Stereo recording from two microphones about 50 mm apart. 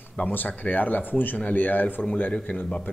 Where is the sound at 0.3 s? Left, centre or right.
Left.